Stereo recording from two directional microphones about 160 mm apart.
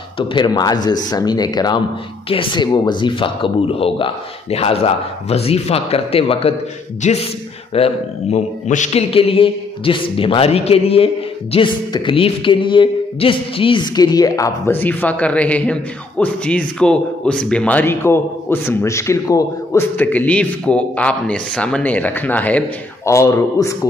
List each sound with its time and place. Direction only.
0.3 s speech: 25° left (ahead or behind)